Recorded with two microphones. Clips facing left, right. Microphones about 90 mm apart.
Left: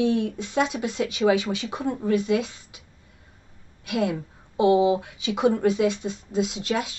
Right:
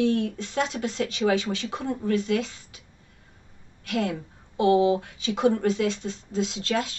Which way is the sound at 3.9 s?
15° left (ahead or behind).